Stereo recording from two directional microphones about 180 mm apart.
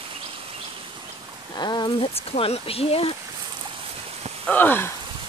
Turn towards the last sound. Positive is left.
turn(degrees=10)  # may be behind; listen again after turning